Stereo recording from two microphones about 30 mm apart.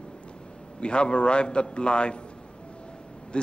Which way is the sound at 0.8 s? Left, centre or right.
Left.